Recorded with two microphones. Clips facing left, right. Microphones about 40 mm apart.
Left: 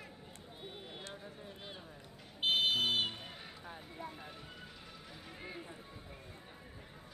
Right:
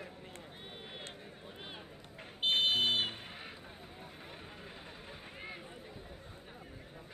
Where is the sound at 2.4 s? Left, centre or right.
Centre.